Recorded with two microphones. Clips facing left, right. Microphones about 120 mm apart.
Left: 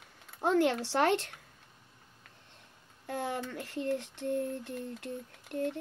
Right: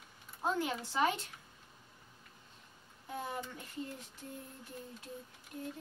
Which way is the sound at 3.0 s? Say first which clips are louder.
Left 6 dB; 85° left.